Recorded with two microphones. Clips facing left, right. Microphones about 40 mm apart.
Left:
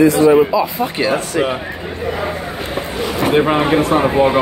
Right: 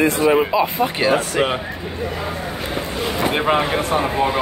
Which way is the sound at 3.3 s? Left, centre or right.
Centre.